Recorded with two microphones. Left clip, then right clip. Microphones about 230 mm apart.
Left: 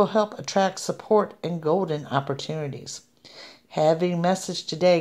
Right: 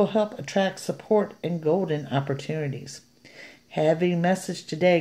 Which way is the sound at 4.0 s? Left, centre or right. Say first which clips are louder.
Left 1 dB; centre.